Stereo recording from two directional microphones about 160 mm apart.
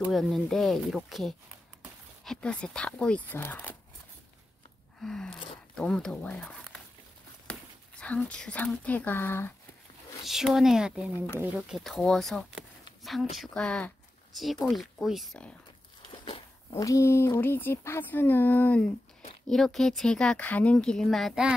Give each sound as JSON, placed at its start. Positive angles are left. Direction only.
{"t": 0.1, "sound": "speech", "side_deg": 0}
{"t": 5.0, "sound": "a sound", "side_deg": 5}
{"t": 5.8, "sound": "speech", "side_deg": 5}
{"t": 10.2, "sound": "speech", "side_deg": 0}
{"t": 11.8, "sound": "speech", "side_deg": 0}
{"t": 16.1, "sound": "a sound", "side_deg": 35}
{"t": 16.7, "sound": "speech", "side_deg": 20}